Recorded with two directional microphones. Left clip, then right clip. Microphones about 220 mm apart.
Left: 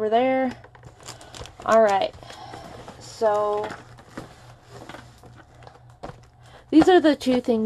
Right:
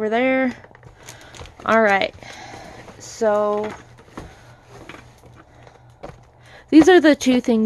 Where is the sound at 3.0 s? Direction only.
50° right (ahead or behind).